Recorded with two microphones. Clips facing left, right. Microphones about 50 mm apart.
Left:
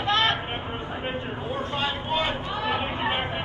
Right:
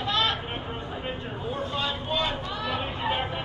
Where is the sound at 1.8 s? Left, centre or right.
Left.